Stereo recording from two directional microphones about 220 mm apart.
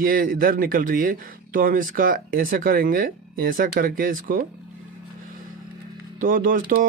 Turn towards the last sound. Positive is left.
turn(degrees=-40)  # may be behind; listen again after turning